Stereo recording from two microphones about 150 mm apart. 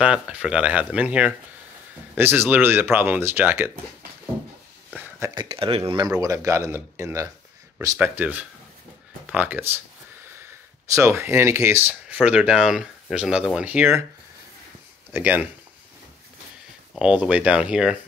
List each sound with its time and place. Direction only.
0.0 s speech: 5° right (ahead or behind)
5.3 s speech: 35° right (ahead or behind)
6.0 s speech: 25° right (ahead or behind)
15.1 s speech: 10° right (ahead or behind)
16.9 s speech: 10° right (ahead or behind)